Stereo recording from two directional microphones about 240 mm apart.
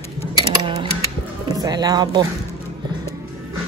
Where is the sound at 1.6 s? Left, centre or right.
Centre.